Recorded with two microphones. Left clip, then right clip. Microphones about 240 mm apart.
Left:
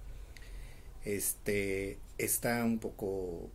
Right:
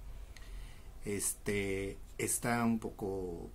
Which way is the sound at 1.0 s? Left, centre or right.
Centre.